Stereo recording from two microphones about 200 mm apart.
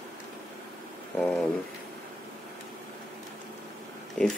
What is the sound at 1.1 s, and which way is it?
Speech, 5° left (ahead or behind).